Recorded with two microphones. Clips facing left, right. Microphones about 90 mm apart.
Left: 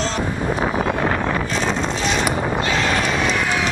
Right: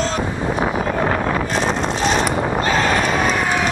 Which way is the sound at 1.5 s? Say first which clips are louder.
Right 2 dB; 45° right (ahead or behind).